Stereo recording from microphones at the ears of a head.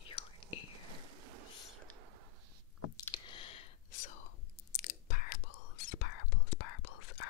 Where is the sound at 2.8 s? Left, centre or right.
Left.